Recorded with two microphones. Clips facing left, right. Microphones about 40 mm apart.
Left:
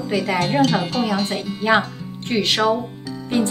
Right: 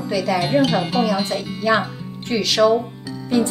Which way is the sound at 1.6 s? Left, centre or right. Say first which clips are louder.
Left 1 dB; left.